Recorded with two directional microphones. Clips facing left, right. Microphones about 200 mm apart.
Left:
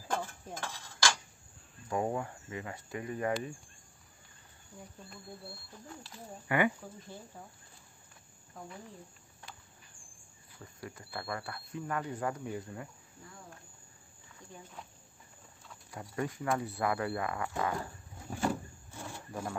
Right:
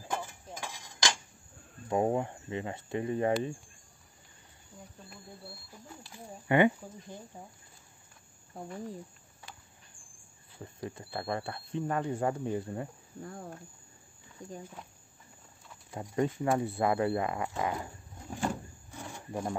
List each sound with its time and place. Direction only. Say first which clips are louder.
0.1 s a sound: left 1 dB; 10° right (ahead or behind)
1.9 s speech: right 5 dB; 25° right (ahead or behind)
5.9 s speech: even; 15° right (ahead or behind)
10.6 s speech: right 6 dB; 25° right (ahead or behind)
13.2 s speech: right 10 dB; 55° right (ahead or behind)
15.9 s speech: right 6 dB; 25° right (ahead or behind)
18.9 s vehicle: right 2 dB; 15° right (ahead or behind)